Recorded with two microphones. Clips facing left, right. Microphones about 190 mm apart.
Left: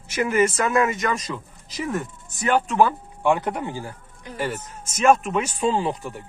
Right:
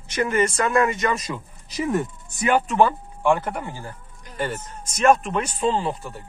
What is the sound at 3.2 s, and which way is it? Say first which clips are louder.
Speech: even; 20° left (ahead or behind).